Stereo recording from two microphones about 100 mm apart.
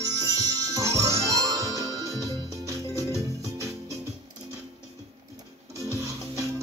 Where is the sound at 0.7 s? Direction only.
35° right (ahead or behind).